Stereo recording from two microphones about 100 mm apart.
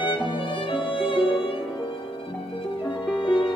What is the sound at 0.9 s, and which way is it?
Music, 60° left (ahead or behind).